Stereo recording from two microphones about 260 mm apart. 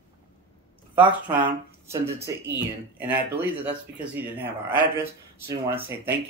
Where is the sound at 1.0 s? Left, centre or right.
Centre.